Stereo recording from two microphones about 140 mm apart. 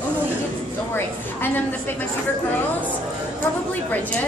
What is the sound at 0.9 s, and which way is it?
A woman's voice, 15° left (ahead or behind).